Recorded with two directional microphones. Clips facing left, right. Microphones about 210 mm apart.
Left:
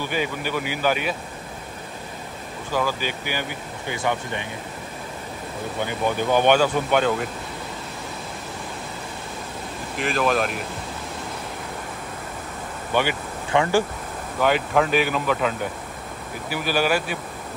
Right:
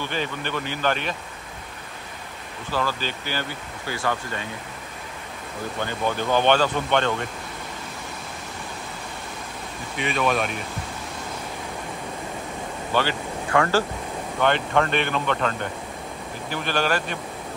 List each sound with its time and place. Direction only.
0.0 s speech: 10° left (ahead or behind)
2.7 s speech: 15° left (ahead or behind)
5.8 s speech: 15° left (ahead or behind)
9.9 s speech: centre (ahead or behind)
12.9 s speech: 15° left (ahead or behind)
14.4 s speech: 5° left (ahead or behind)